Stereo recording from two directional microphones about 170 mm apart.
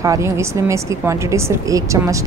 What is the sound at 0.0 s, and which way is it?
Speech, 20° right (ahead or behind).